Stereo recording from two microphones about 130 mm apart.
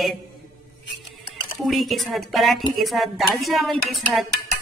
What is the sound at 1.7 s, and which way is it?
Music, centre (ahead or behind).